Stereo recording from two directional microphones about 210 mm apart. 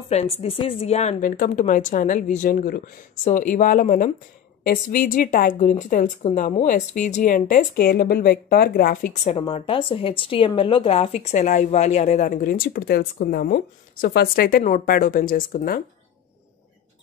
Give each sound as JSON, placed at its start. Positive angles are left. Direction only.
{"t": 0.1, "sound": "a woman's voice", "side_deg": 30}
{"t": 9.3, "sound": "a woman's voice", "side_deg": 25}